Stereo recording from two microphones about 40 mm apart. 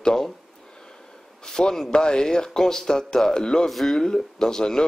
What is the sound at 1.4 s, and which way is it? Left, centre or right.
A man's voice, centre.